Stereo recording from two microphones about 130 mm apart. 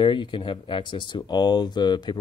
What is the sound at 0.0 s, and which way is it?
Speech, 40° left (ahead or behind).